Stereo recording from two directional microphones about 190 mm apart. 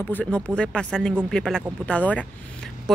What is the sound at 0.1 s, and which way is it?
Speech, 5° left (ahead or behind).